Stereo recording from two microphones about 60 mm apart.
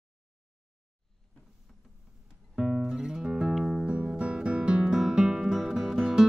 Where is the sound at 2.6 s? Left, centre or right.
Centre.